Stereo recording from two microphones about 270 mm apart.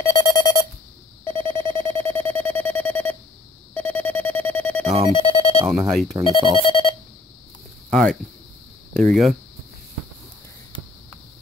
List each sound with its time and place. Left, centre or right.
0.0 s a sound: centre
1.2 s alarm clock: centre
3.7 s music: centre
4.8 s music: right
5.1 s music: centre
5.7 s speech: centre
6.5 s a sound: centre
7.9 s speech: centre